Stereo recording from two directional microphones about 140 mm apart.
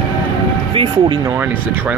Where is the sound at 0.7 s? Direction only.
35° right (ahead or behind).